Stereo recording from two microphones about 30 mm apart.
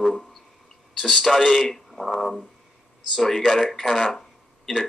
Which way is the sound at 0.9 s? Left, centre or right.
Centre.